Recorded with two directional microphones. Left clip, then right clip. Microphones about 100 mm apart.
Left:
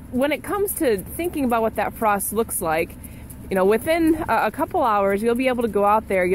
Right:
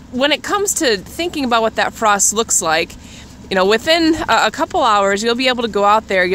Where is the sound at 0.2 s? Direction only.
25° right (ahead or behind).